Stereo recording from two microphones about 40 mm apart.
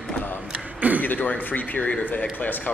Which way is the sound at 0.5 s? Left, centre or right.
Right.